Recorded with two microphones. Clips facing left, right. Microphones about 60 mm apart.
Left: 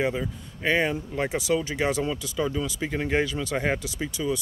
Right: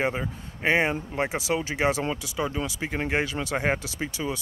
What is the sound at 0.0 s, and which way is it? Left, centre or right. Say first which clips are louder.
Speech: left 1 dB; right.